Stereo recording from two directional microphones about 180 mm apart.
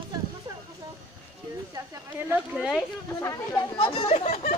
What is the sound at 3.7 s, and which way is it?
Chatter, 30° left (ahead or behind).